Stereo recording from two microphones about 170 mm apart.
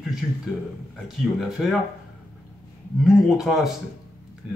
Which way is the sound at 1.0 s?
Centre (ahead or behind).